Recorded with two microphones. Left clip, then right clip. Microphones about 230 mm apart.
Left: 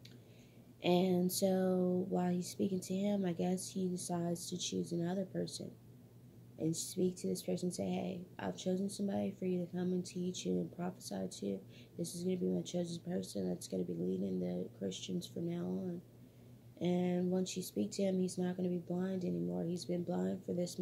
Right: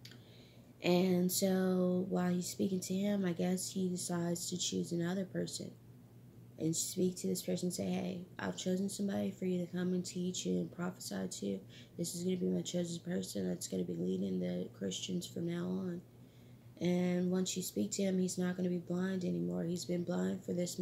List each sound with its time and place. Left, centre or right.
0.8 s speech: centre
6.6 s speech: centre